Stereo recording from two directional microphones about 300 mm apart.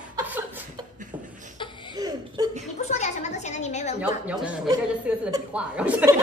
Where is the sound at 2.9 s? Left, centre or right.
Left.